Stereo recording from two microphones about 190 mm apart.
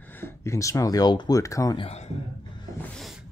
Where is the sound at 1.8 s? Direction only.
35° left (ahead or behind).